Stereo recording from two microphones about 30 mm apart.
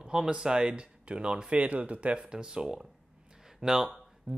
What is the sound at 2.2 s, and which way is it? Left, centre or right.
Speech, right.